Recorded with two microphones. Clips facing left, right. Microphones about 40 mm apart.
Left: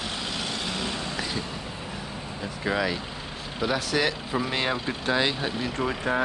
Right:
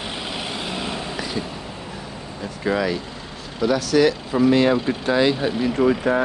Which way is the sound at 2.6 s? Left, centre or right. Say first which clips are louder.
Right 5 dB; centre.